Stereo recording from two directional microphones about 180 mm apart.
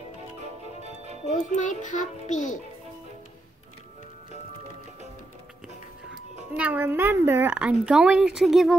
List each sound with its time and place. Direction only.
1.5 s a child's voice: 45° left (ahead or behind)
6.5 s a woman's voice: 10° right (ahead or behind)